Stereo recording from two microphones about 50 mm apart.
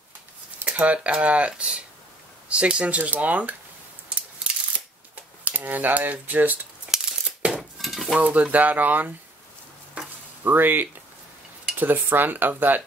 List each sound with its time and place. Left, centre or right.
0.7 s speech: right
4.4 s a sound: right
7.4 s dishes: right
7.8 s cutlery: centre
8.2 s speech: right
10.0 s a sound: right
10.4 s speech: right